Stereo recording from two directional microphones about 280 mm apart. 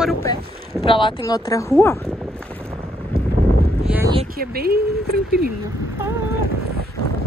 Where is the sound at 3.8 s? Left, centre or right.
Centre.